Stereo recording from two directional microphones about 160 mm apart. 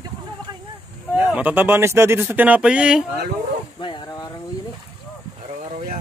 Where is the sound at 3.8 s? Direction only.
30° left (ahead or behind).